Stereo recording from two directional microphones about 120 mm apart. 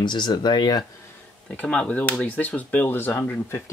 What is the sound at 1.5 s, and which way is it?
Speech, 10° left (ahead or behind).